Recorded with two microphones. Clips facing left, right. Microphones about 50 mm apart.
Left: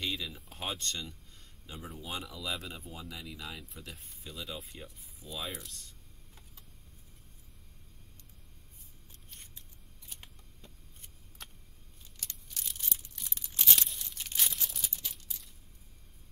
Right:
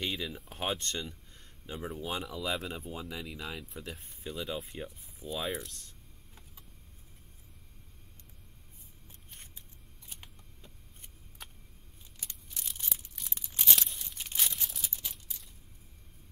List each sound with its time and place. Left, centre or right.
0.0 s speech: centre
1.0 s a sound: centre
2.0 s speech: centre
2.7 s speech: centre
3.5 s speech: centre
4.2 s speech: centre
5.4 s speech: centre
9.3 s scissors: centre
10.0 s a sound: centre
12.2 s crumpling: centre
13.3 s a sound: centre